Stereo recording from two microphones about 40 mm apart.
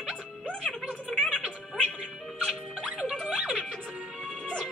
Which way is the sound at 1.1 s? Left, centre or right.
Centre.